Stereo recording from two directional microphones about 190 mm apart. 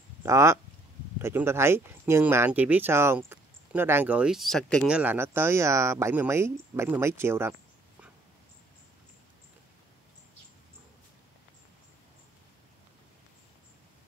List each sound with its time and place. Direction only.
0.2 s speech: 15° right (ahead or behind); by 4.8 s 5° left (ahead or behind)
4.8 s speech: 10° right (ahead or behind)